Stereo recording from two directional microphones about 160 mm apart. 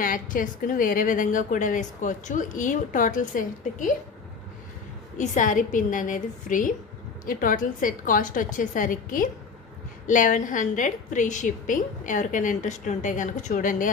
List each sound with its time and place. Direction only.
0.0 s a woman's voice: 60° left (ahead or behind)
5.1 s a woman's voice: 50° left (ahead or behind)